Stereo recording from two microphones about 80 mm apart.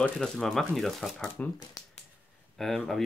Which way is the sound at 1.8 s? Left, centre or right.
Left.